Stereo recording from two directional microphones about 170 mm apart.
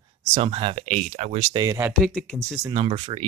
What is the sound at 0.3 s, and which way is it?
Speech, 35° right (ahead or behind).